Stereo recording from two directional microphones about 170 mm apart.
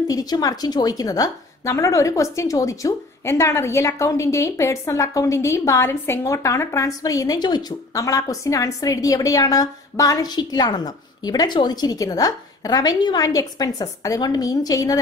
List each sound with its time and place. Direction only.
0.1 s a woman's voice: 20° left (ahead or behind)